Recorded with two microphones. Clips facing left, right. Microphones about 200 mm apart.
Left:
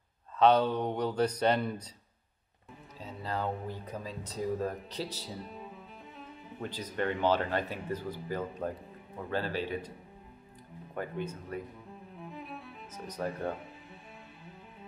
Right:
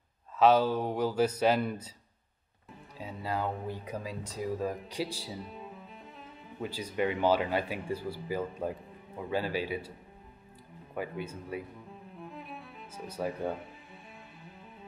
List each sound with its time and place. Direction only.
0.4 s speech: 5° right (ahead or behind)
3.0 s speech: 10° right (ahead or behind)
11.0 s speech: 10° right (ahead or behind)
12.2 s music: centre (ahead or behind)